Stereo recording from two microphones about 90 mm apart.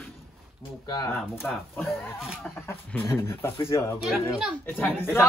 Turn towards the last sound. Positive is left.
turn(degrees=25)  # may be behind; listen again after turning